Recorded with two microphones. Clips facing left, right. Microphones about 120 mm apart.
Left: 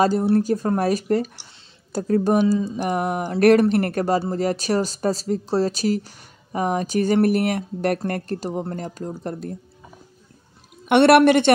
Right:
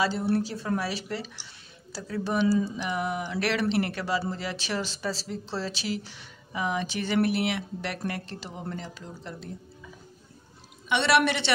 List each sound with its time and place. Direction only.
0.0 s speech: 45° left (ahead or behind)
2.4 s mantra: 20° left (ahead or behind)
2.8 s speech: 50° left (ahead or behind)
10.9 s a woman's voice: 55° left (ahead or behind)